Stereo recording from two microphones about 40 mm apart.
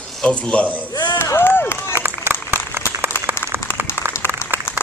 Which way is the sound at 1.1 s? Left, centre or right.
Left.